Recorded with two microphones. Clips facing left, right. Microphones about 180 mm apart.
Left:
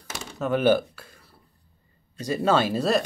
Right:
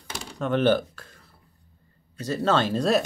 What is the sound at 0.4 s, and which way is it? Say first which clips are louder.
Speech: left 1 dB; 10° left (ahead or behind).